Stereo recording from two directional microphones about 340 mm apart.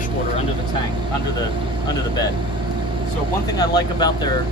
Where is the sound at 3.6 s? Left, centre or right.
Centre.